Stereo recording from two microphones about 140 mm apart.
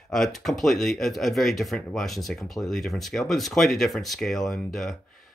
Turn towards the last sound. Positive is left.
turn(degrees=0)  # may be behind; listen again after turning